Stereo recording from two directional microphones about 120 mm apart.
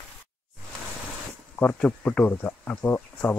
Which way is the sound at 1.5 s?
10° left (ahead or behind).